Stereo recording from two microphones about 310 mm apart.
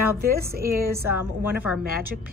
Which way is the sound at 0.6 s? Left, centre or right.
Centre.